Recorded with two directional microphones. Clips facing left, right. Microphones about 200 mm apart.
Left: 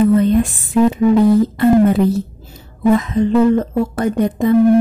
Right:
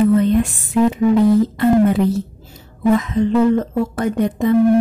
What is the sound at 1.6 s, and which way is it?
A woman's voice, 35° left (ahead or behind).